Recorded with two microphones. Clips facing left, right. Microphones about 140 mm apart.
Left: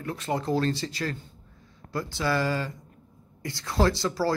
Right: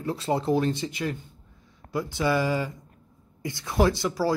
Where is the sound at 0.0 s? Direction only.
25° right (ahead or behind).